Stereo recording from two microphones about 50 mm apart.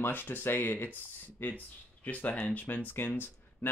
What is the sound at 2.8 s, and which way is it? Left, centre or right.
Speech, left.